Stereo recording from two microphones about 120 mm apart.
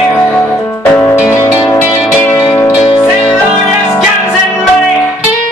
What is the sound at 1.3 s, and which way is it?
Music, 25° left (ahead or behind).